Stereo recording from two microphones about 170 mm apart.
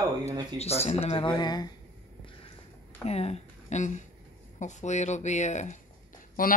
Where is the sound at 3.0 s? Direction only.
35° left (ahead or behind).